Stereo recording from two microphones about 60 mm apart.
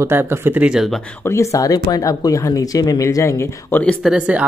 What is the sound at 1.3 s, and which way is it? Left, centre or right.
Speech, left.